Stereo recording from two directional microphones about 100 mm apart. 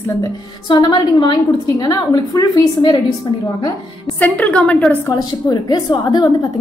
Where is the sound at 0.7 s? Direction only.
45° left (ahead or behind).